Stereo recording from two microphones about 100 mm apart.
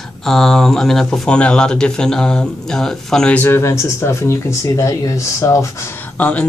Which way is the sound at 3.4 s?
25° left (ahead or behind).